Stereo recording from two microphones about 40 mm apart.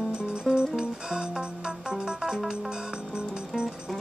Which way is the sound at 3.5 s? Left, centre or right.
Centre.